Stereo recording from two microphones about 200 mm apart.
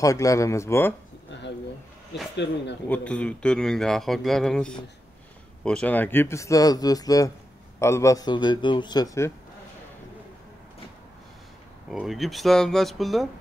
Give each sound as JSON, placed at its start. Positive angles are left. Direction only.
{"t": 0.0, "sound": "speech", "side_deg": 15}
{"t": 2.3, "sound": "speech", "side_deg": 60}
{"t": 2.9, "sound": "speech", "side_deg": 5}
{"t": 11.9, "sound": "speech", "side_deg": 0}